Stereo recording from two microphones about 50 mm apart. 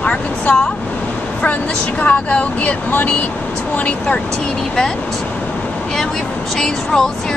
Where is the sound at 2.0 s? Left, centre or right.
Left.